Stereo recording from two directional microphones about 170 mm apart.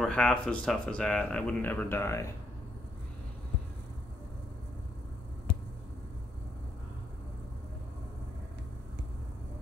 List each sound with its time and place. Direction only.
0.0 s speech: 5° left (ahead or behind)